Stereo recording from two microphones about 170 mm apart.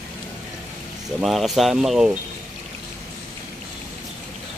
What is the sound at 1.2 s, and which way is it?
Speech, centre (ahead or behind).